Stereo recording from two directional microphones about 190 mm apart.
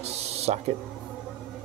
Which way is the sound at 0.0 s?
35° right (ahead or behind).